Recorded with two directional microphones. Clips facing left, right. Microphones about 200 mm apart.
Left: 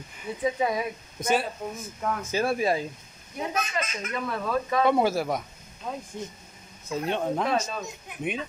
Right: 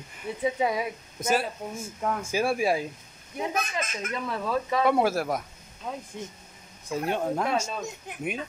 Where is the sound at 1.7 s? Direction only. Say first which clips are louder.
Right 4 dB; 25° right (ahead or behind).